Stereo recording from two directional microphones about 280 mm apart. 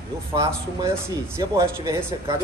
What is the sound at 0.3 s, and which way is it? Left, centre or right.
Speech, centre.